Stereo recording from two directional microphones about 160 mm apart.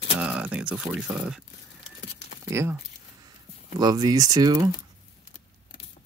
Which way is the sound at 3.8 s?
25° right (ahead or behind).